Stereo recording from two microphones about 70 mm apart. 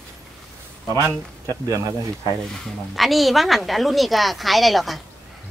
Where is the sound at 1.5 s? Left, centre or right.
Right.